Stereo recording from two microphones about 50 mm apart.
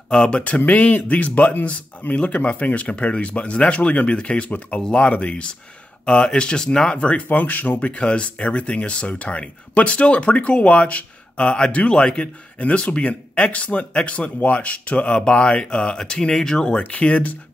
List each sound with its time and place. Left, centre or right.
0.1 s speech: centre
0.6 s speech: left; by 16.8 s centre
16.9 s speech: left